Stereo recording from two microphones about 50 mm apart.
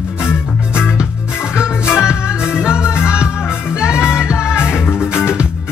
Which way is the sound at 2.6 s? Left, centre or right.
Centre.